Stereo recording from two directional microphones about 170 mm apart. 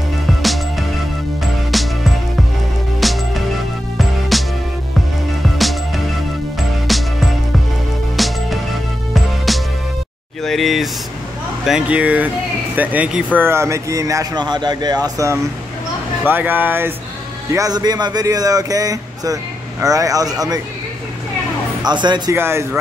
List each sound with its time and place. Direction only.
0.4 s music: centre (ahead or behind)
3.0 s music: centre (ahead or behind)
6.9 s music: centre (ahead or behind)
8.2 s music: centre (ahead or behind)
9.5 s music: centre (ahead or behind)
10.4 s a sound: centre (ahead or behind)
11.6 s speech: 5° right (ahead or behind); by 20.6 s 20° right (ahead or behind)
21.8 s speech: 25° right (ahead or behind)
22.3 s speech: 15° right (ahead or behind)